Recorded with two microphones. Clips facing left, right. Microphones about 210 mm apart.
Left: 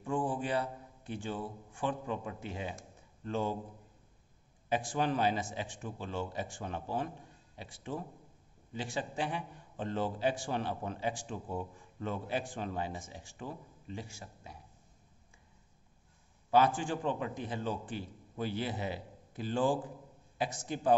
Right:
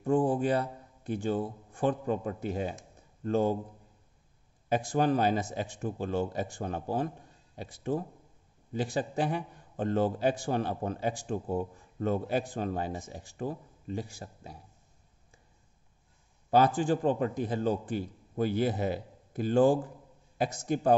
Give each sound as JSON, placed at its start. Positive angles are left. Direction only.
{"t": 0.0, "sound": "a man's voice", "side_deg": -40}
{"t": 4.6, "sound": "a man's voice", "side_deg": -45}
{"t": 16.4, "sound": "a man's voice", "side_deg": -40}